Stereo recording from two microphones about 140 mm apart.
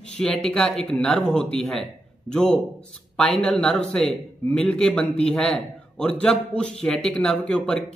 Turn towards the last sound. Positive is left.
turn(degrees=5)  # may be behind; listen again after turning